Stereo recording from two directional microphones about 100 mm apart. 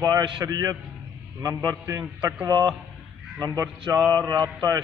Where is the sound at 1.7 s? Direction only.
20° right (ahead or behind).